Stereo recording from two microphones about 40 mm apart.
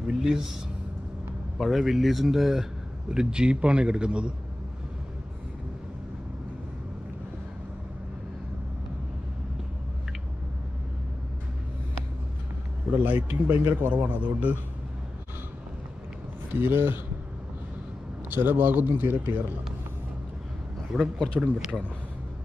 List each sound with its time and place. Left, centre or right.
0.1 s a man's voice: centre
1.6 s speech: centre
3.1 s a man's voice: right
13.0 s speech: right
14.0 s a man's voice: right
16.5 s speech: right
18.3 s speech: right
20.9 s speech: centre
21.4 s a man's voice: centre